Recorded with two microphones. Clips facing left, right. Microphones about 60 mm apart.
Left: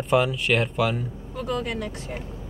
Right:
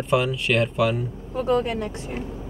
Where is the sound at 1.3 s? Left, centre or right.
Right.